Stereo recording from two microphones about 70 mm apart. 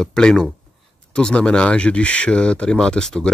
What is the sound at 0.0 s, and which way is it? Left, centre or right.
Speech, centre.